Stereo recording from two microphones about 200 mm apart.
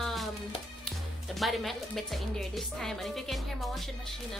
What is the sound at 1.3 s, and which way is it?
Speech, centre (ahead or behind).